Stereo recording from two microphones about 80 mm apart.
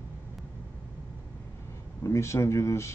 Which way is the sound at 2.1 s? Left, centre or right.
Left.